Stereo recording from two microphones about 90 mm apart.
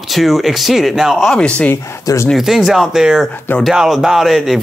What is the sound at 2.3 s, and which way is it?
Speech, 5° right (ahead or behind).